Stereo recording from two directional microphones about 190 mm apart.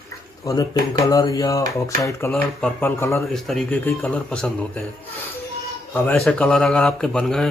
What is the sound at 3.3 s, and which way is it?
Speech, centre (ahead or behind).